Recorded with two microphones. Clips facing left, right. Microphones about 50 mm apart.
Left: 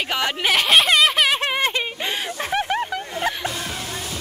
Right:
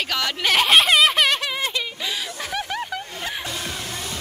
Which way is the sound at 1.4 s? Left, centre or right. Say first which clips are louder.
Left 4 dB; left.